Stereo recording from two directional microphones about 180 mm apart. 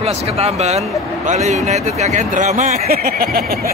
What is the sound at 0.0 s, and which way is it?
A man's voice, 35° right (ahead or behind).